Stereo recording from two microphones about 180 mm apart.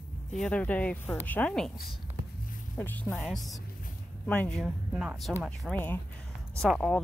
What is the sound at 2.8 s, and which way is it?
Speech, 10° left (ahead or behind).